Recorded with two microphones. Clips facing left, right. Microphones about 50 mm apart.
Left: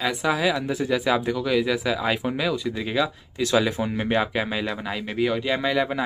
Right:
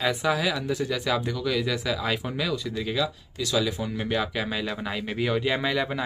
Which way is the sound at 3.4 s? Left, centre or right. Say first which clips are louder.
Left 5 dB; left.